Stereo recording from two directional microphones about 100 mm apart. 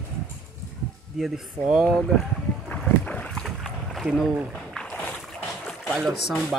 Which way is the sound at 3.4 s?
Centre (ahead or behind).